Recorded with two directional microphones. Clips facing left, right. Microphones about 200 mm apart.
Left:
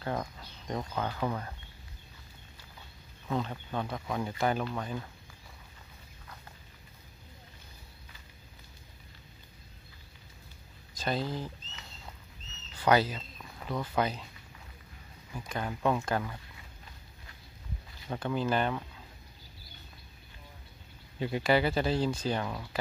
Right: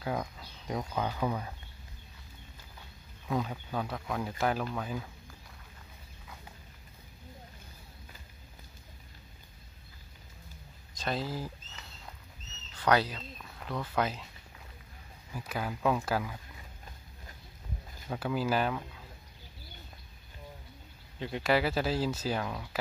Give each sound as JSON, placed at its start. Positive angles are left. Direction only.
{"t": 0.0, "sound": "speech", "side_deg": -5}
{"t": 3.3, "sound": "speech", "side_deg": -5}
{"t": 11.0, "sound": "speech", "side_deg": 0}
{"t": 12.8, "sound": "speech", "side_deg": 0}
{"t": 15.3, "sound": "speech", "side_deg": -5}
{"t": 18.0, "sound": "speech", "side_deg": -5}
{"t": 21.2, "sound": "speech", "side_deg": 5}